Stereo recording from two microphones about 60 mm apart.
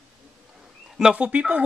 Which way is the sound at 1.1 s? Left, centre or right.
Right.